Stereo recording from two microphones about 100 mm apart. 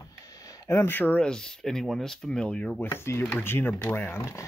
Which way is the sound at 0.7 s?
25° left (ahead or behind).